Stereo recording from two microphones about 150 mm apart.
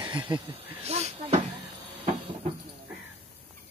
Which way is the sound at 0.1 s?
30° right (ahead or behind).